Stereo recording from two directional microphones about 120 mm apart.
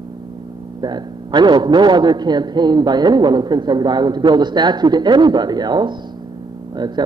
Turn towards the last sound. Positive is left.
turn(degrees=-35)  # may be behind; listen again after turning